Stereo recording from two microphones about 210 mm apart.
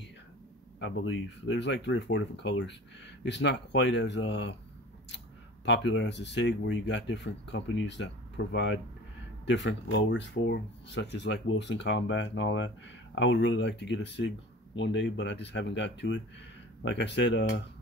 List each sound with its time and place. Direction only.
0.7 s speech: 60° left (ahead or behind)
5.7 s speech: 60° left (ahead or behind)